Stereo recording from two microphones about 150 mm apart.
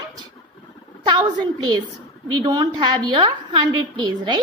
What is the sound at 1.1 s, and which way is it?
A woman's voice, 30° right (ahead or behind).